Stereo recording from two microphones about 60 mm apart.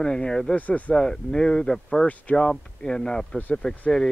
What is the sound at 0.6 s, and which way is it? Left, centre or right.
Speech, left.